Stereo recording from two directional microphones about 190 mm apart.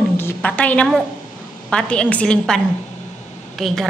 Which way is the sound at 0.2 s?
10° left (ahead or behind).